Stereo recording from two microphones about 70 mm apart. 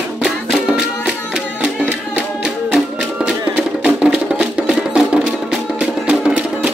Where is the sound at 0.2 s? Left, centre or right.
Centre.